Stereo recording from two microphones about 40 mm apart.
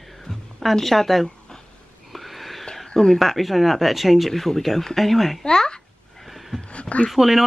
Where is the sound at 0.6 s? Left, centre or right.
Centre.